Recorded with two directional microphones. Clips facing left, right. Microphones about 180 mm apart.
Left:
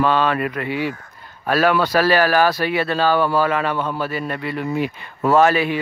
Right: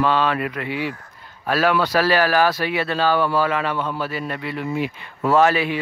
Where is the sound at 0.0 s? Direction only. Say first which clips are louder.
Left 2 dB; 50° left (ahead or behind).